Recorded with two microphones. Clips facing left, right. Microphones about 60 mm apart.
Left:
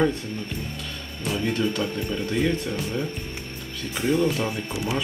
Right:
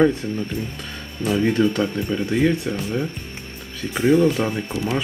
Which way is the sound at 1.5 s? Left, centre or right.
Centre.